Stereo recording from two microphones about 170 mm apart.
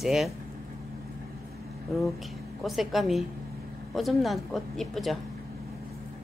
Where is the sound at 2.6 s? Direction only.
Centre (ahead or behind).